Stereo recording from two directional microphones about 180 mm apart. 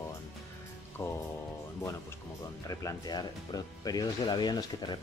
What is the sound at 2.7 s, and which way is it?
Speech, 20° left (ahead or behind).